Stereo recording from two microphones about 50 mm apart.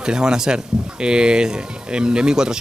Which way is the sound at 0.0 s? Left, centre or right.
Centre.